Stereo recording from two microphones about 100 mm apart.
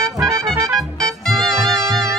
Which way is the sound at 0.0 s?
30° right (ahead or behind).